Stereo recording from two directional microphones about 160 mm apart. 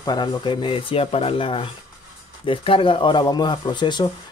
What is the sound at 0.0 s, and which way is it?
Speech, 30° left (ahead or behind).